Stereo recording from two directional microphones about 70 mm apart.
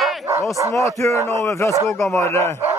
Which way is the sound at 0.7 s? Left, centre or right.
Left.